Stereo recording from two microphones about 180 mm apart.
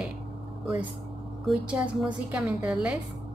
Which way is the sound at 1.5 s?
5° right (ahead or behind).